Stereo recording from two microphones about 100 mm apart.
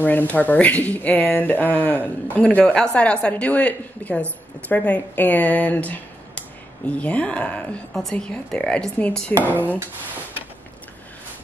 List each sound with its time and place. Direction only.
0.0 s speech: 20° left (ahead or behind)
9.4 s speech: 15° right (ahead or behind)